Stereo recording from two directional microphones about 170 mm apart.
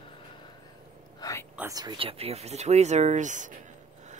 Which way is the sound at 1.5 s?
20° right (ahead or behind).